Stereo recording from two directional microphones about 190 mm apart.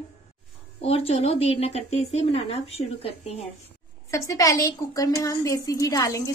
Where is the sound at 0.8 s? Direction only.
30° left (ahead or behind).